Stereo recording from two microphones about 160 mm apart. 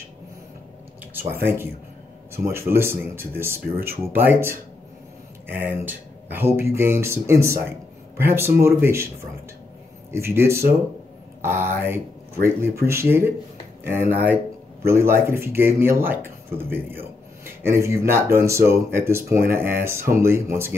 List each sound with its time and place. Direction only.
1.2 s speech: 15° right (ahead or behind)
10.1 s speech: 15° right (ahead or behind)